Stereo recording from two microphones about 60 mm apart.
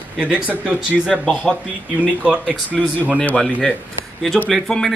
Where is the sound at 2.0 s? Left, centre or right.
Right.